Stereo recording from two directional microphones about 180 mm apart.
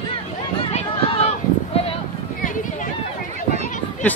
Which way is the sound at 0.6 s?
35° left (ahead or behind).